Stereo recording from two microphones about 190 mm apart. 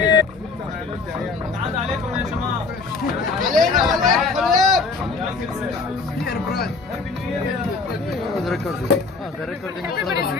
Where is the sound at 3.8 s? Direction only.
Centre (ahead or behind).